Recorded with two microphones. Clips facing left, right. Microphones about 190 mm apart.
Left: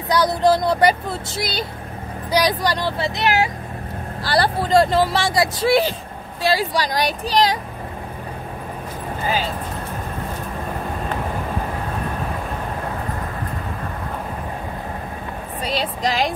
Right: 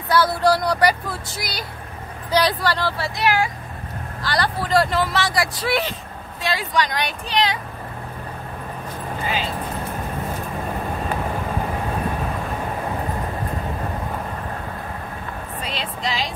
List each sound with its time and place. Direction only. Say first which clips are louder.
0.1 s speech: left 1 dB; 20° left (ahead or behind)
2.3 s speech: left 1 dB; 15° left (ahead or behind)
4.2 s speech: left 4 dB; 30° left (ahead or behind)
15.6 s speech: left 6 dB; 40° left (ahead or behind)